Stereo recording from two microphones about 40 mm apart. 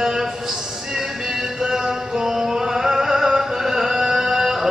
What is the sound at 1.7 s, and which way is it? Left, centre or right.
Music, centre.